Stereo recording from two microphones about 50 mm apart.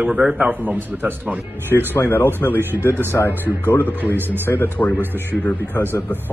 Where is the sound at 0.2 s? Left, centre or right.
Centre.